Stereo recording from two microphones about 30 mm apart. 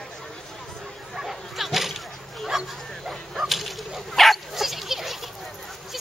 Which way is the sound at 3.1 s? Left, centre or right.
Centre.